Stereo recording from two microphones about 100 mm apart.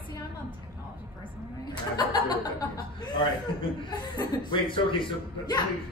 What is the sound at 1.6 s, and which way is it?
A man's voice, 45° left (ahead or behind).